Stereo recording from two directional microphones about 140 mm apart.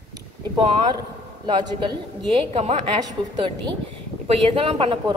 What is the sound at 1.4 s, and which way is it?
A woman's voice, 35° right (ahead or behind).